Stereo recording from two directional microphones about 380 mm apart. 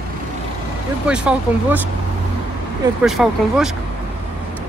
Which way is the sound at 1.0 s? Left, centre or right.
Centre.